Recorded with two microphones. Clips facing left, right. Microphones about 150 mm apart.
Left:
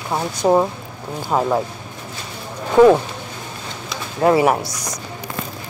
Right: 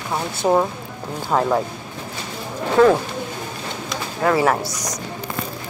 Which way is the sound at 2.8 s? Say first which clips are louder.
Left 3 dB; 15° left (ahead or behind).